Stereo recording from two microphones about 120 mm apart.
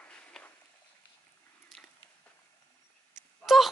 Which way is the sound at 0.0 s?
10° left (ahead or behind).